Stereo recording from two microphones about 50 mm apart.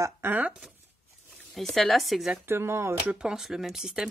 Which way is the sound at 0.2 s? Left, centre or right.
Right.